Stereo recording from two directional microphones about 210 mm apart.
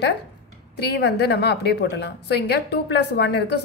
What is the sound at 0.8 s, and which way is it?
A woman's voice, 55° left (ahead or behind).